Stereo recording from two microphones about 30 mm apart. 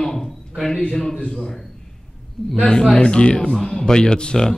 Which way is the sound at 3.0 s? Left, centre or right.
Left.